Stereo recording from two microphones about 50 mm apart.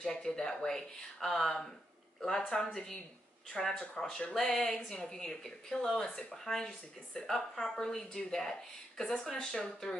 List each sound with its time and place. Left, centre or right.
0.0 s speech: centre